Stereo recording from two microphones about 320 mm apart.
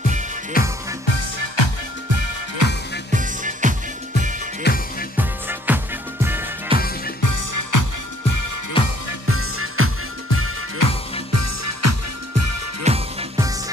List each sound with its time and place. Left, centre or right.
0.5 s music: left
2.6 s music: right
3.1 s music: right
4.6 s music: left
5.1 s music: centre
7.2 s music: left
8.8 s music: centre
9.3 s music: right
10.8 s music: left
11.3 s music: right
12.8 s music: centre